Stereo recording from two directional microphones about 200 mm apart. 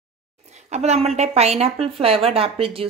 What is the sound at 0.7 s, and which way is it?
A woman's voice, 35° right (ahead or behind).